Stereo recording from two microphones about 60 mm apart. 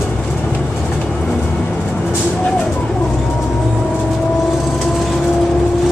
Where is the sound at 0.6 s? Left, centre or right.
Centre.